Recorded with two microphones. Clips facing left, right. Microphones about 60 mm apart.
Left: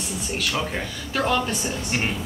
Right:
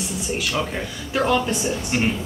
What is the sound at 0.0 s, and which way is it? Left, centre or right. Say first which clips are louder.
A woman's voice: right 2 dB; centre.